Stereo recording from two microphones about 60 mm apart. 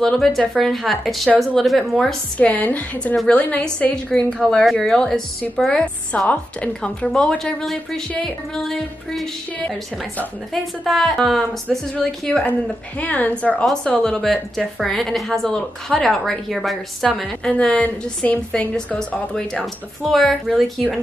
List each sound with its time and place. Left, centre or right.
0.0 s a woman's voice: centre
2.3 s a woman's voice: left
3.9 s a woman's voice: centre
7.1 s a woman's voice: centre
10.5 s a woman's voice: centre
13.0 s a woman's voice: left
14.0 s a woman's voice: centre
17.5 s a woman's voice: centre